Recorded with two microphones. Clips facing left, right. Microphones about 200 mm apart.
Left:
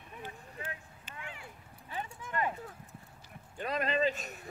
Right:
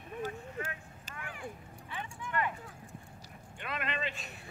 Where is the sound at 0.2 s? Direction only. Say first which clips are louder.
Right 6 dB; 40° right (ahead or behind).